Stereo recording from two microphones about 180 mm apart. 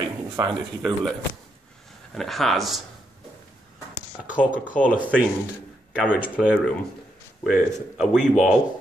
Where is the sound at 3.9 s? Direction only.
10° right (ahead or behind).